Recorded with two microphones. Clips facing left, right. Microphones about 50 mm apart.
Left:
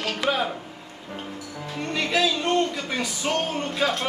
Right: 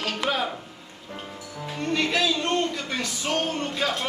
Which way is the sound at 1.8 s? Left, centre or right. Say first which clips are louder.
Left 1 dB; centre.